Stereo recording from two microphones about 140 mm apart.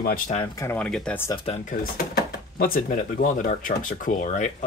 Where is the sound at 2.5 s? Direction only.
90° left.